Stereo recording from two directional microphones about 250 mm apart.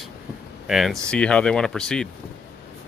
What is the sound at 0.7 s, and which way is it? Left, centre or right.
Speech, centre.